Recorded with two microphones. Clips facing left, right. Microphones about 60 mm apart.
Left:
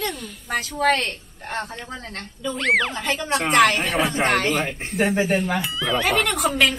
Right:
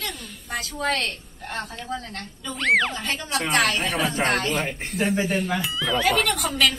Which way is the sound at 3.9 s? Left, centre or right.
Left.